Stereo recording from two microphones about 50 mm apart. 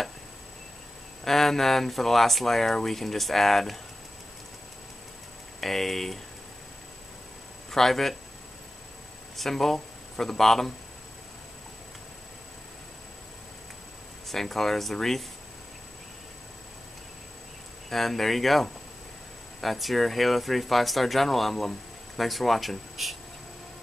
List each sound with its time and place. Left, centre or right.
1.2 s speech: centre
5.6 s speech: centre
7.7 s speech: centre
9.4 s speech: centre
14.2 s speech: centre
17.8 s speech: centre